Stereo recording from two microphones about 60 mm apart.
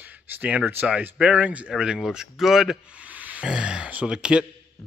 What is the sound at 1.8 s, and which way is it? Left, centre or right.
Speech, centre.